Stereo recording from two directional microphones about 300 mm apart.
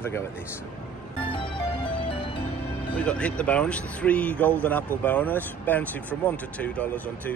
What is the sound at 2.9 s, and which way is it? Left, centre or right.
Speech, centre.